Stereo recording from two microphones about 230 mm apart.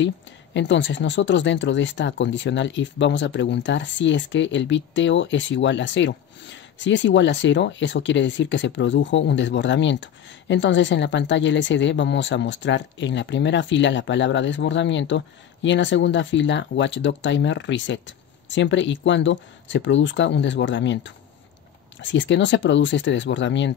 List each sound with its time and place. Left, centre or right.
0.6 s speech: left